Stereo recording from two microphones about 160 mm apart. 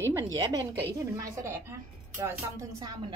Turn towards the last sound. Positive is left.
turn(degrees=-25)  # may be behind; listen again after turning